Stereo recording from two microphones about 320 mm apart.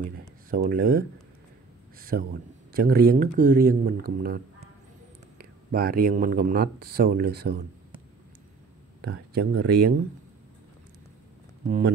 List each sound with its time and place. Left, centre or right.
0.5 s speech: right
5.4 s speech: right
9.0 s speech: right
11.6 s speech: right